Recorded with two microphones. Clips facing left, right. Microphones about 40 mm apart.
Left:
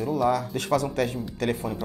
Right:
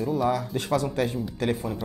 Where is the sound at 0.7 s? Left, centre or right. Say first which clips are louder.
Left 1 dB; left.